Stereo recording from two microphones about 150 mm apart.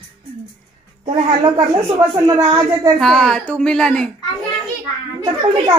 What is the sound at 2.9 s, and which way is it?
A woman's voice, centre (ahead or behind).